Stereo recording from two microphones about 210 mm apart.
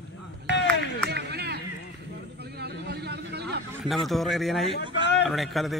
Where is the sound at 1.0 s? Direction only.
50° right (ahead or behind).